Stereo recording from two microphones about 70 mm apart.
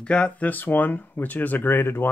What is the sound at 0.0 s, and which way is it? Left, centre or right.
Speech, centre.